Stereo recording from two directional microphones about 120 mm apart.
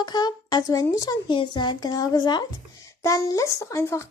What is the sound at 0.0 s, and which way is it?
A child's voice, 35° left (ahead or behind).